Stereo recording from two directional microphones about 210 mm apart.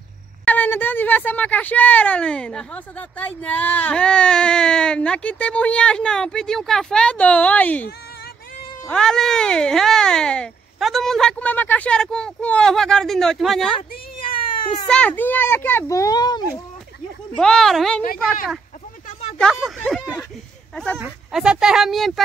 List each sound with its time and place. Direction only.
0.5 s speech: 10° left (ahead or behind)
13.7 s a sound: 25° left (ahead or behind)
14.9 s a child's voice: 5° left (ahead or behind)
17.4 s speech: 5° left (ahead or behind)
19.3 s speech: centre (ahead or behind)